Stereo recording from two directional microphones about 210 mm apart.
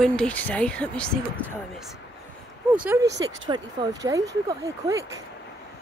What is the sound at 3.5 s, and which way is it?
Speech, 20° right (ahead or behind).